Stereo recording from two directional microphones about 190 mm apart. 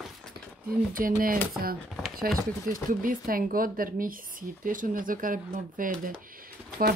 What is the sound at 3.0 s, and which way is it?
A woman's voice, 45° right (ahead or behind).